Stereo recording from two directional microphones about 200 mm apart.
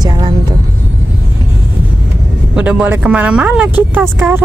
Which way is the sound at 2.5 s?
5° right (ahead or behind).